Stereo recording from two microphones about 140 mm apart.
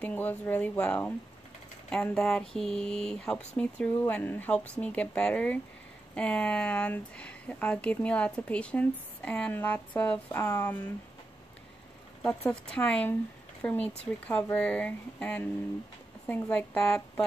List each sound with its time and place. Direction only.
0.0 s speech: 15° left (ahead or behind)
12.6 s speech: 10° left (ahead or behind)